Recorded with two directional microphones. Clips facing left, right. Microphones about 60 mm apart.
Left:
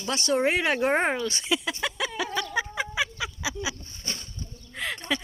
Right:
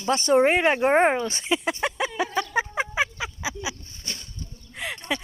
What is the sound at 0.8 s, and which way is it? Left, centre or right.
Speech, centre.